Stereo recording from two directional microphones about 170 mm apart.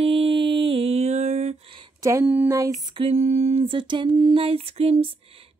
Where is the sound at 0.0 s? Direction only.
35° right (ahead or behind).